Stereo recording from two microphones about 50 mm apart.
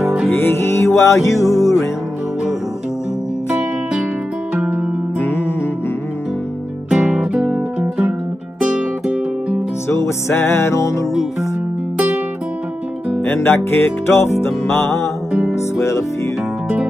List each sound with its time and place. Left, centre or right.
0.4 s music: left
6.9 s music: centre
8.7 s music: centre
9.8 s music: left
13.2 s music: left